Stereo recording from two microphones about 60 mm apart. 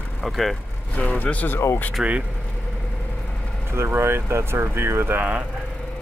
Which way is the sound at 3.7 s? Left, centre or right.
Right.